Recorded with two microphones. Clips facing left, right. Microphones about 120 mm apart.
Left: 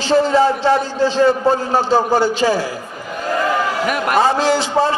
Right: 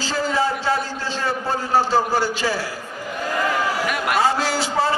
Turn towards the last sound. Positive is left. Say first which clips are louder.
# left 6 dB
turn(degrees=20)  # may be behind; listen again after turning